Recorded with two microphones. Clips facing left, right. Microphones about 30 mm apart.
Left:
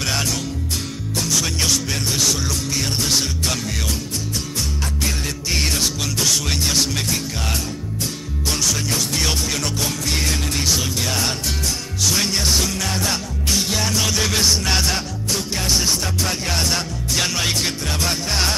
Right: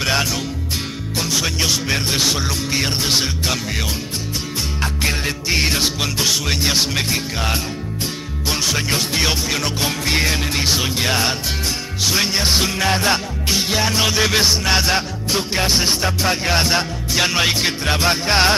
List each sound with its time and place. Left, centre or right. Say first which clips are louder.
0.0 s music: right 3 dB; right
2.1 s music: right 2 dB; right
5.0 s music: right 4 dB; right
12.4 s music: right 4 dB; right